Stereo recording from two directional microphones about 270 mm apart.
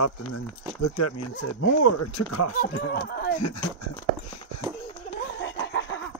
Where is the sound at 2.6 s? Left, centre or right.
Left.